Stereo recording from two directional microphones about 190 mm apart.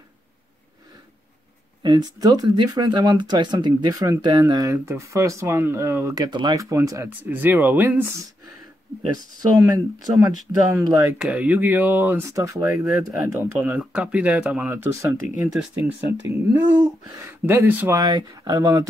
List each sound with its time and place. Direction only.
1.8 s speech: 20° right (ahead or behind)
9.1 s speech: 20° right (ahead or behind)
16.3 s speech: 20° right (ahead or behind)